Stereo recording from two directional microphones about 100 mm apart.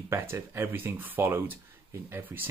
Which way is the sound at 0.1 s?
25° right (ahead or behind).